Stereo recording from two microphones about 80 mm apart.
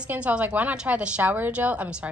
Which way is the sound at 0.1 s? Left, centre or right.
Centre.